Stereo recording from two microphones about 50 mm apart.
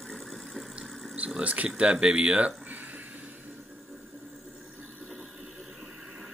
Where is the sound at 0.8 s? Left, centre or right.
Centre.